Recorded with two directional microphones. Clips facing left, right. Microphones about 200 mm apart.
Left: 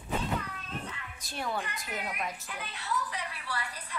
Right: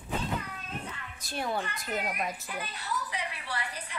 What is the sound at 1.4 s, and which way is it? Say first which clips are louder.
Speech: right 2 dB; 25° right (ahead or behind).